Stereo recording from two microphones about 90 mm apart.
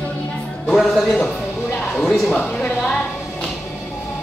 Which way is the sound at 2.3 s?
10° left (ahead or behind).